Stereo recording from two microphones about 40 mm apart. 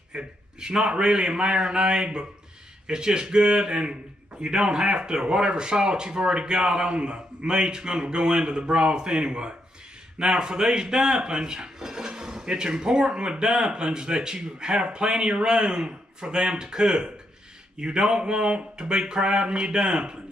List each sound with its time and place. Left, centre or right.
0.1 s a man's voice: right